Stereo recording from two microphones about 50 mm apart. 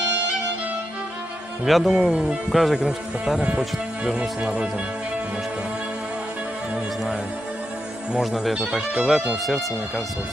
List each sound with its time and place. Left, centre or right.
1.7 s speech: centre
8.2 s speech: centre